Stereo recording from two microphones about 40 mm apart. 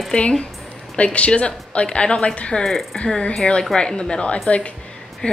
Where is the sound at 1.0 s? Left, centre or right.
Left.